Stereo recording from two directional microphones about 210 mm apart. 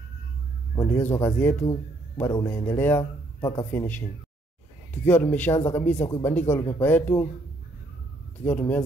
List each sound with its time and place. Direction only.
0.7 s speech: 10° left (ahead or behind)
3.3 s a man's voice: 20° left (ahead or behind)
3.7 s speech: 10° left (ahead or behind)
8.5 s speech: 10° left (ahead or behind)